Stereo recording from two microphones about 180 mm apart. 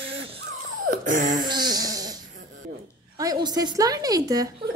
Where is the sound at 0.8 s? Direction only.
45° right (ahead or behind).